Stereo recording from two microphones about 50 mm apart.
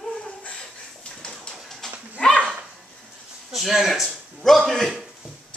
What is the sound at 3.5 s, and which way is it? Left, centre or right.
A man's voice, centre.